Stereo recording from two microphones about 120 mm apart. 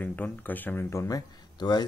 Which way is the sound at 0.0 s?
15° left (ahead or behind).